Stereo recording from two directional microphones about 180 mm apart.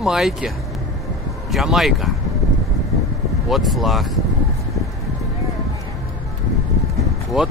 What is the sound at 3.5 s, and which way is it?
Speech, centre (ahead or behind).